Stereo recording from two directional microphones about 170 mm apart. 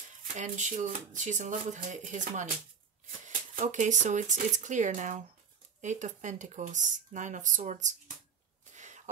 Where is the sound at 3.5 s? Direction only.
45° right (ahead or behind).